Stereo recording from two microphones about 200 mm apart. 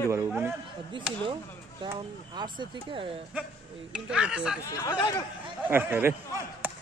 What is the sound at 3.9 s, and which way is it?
Speech, 5° right (ahead or behind).